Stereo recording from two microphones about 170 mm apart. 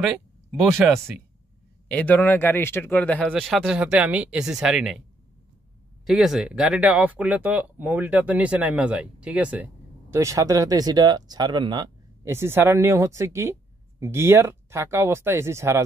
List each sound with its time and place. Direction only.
0.0 s speech: 5° right (ahead or behind)
1.9 s speech: 10° left (ahead or behind)
6.0 s speech: centre (ahead or behind)
10.1 s speech: 20° right (ahead or behind)
12.3 s speech: 15° right (ahead or behind)